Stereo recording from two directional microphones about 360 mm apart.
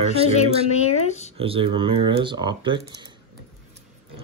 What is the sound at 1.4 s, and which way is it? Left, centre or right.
Speech, centre.